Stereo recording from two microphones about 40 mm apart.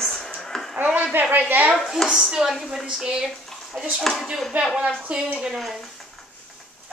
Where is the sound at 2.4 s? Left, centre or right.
Centre.